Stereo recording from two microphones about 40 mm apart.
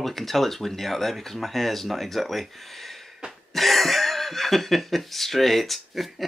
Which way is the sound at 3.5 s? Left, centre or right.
Centre.